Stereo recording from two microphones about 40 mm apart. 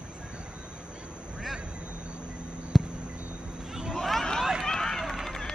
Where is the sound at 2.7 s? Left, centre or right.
Centre.